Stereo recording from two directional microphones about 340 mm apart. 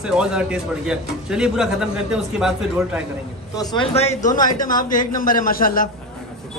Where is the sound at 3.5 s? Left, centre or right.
Centre.